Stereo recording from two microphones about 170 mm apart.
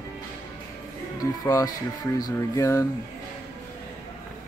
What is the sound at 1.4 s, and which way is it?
Music, 20° left (ahead or behind).